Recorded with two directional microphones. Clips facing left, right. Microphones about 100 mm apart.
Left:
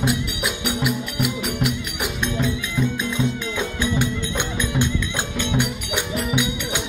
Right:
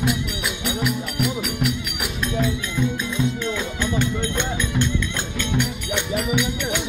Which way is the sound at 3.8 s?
10° left (ahead or behind).